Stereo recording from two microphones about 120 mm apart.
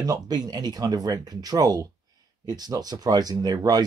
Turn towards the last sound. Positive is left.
turn(degrees=-30)  # may be behind; listen again after turning